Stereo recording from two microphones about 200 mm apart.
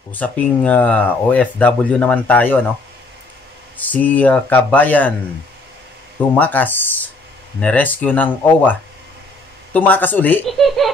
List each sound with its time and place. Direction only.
0.1 s speech: 10° left (ahead or behind)
3.7 s speech: 10° left (ahead or behind)
6.3 s speech: 10° left (ahead or behind)